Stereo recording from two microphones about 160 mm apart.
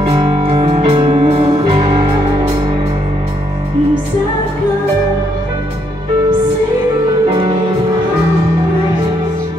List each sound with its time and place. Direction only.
0.0 s music: 35° right (ahead or behind)